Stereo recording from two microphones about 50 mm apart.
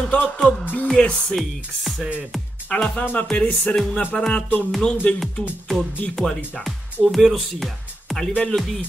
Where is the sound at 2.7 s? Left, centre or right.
Left.